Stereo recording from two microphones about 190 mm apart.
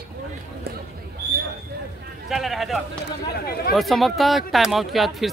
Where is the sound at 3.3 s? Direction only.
50° left (ahead or behind).